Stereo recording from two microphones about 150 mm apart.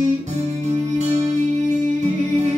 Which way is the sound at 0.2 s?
50° right (ahead or behind).